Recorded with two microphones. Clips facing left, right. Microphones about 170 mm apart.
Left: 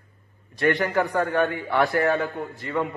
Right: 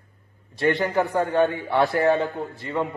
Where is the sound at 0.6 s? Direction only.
20° right (ahead or behind).